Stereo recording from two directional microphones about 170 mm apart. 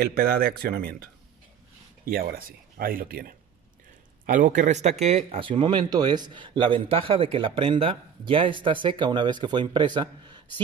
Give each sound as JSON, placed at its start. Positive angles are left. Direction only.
{"t": 0.0, "sound": "speech", "side_deg": -65}
{"t": 2.0, "sound": "speech", "side_deg": -60}
{"t": 4.3, "sound": "speech", "side_deg": -50}